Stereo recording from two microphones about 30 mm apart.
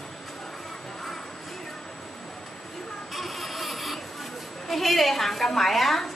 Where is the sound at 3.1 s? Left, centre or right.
Centre.